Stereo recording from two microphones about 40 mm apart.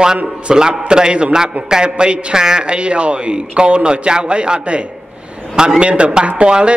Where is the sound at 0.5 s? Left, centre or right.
Centre.